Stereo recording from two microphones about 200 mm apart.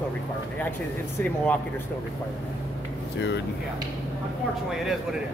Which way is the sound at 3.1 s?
60° left (ahead or behind).